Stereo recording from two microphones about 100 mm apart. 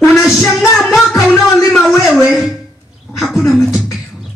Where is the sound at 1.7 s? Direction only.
5° left (ahead or behind).